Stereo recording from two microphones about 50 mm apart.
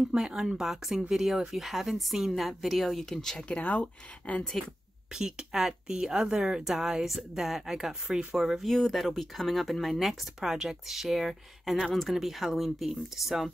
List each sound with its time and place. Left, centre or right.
0.1 s speech: centre
3.5 s speech: left
5.1 s speech: centre
8.6 s speech: centre